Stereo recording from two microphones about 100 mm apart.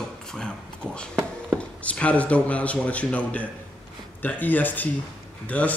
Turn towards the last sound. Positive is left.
turn(degrees=15)  # may be behind; listen again after turning